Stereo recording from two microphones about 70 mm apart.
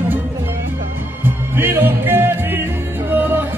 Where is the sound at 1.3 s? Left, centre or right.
Right.